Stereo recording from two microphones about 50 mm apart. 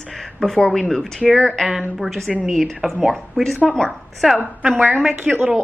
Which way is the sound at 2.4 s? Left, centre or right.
Centre.